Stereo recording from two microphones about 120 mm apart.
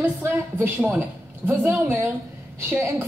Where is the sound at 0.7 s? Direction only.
20° right (ahead or behind).